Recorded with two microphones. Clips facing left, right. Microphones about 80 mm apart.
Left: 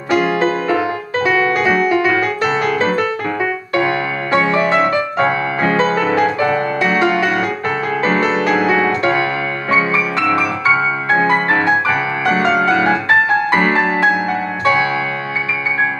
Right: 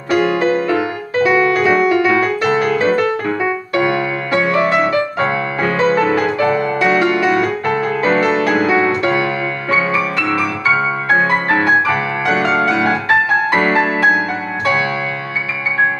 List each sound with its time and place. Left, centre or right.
0.1 s music: left
4.3 s music: left
5.6 s music: left
9.7 s music: left